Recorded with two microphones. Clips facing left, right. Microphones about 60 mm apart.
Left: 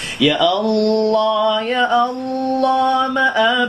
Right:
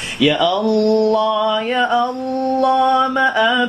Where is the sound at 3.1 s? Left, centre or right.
Centre.